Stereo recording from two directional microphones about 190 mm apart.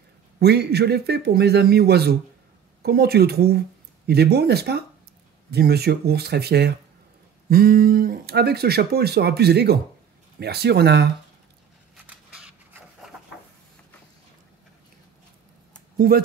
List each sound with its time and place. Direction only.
0.4 s speech: 60° right (ahead or behind)
12.1 s scissors: 5° right (ahead or behind)
16.1 s speech: 50° right (ahead or behind)